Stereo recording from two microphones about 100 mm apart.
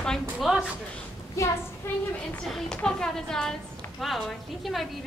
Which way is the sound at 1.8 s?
20° left (ahead or behind).